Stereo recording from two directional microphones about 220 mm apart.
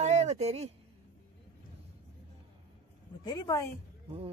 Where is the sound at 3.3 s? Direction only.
15° left (ahead or behind).